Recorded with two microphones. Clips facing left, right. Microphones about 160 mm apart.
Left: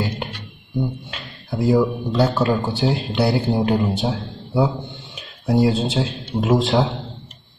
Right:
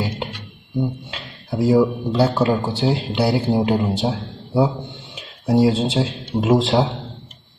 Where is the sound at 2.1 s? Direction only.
Centre (ahead or behind).